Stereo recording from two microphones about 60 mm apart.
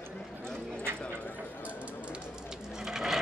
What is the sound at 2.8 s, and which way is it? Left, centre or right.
Sewing machine, centre.